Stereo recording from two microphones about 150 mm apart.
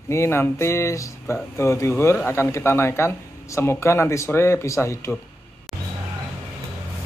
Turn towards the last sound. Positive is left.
turn(degrees=0)  # may be behind; listen again after turning